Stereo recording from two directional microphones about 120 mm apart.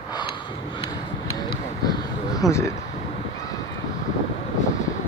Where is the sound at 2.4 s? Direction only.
25° left (ahead or behind).